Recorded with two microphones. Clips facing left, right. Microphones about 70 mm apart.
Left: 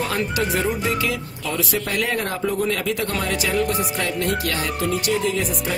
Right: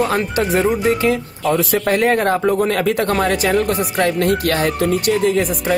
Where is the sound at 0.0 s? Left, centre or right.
Right.